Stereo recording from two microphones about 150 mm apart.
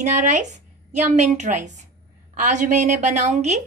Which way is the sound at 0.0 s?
55° right (ahead or behind).